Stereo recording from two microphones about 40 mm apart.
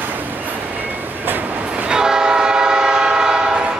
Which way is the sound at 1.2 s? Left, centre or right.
Right.